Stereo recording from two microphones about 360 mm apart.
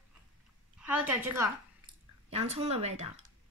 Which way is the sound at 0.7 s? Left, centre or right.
Centre.